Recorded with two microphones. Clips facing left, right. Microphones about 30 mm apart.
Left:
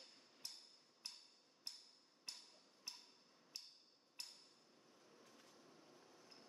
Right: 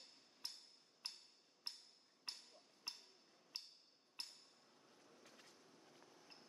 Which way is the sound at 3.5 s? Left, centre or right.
Right.